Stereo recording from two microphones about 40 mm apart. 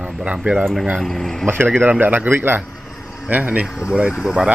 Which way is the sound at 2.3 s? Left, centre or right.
Right.